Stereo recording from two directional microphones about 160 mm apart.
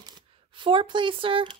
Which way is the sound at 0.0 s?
30° right (ahead or behind).